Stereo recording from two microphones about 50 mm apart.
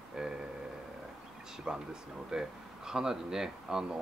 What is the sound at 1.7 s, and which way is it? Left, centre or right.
Speech, centre.